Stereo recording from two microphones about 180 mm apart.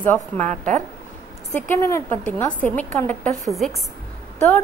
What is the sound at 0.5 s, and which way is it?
Speech, 45° right (ahead or behind).